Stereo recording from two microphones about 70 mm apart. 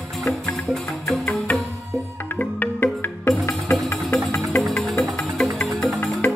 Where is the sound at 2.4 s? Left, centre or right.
Left.